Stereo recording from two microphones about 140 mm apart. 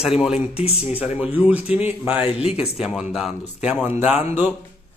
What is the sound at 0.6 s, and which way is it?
Speech, 45° left (ahead or behind).